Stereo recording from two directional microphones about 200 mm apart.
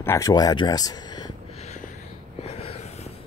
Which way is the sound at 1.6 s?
35° left (ahead or behind).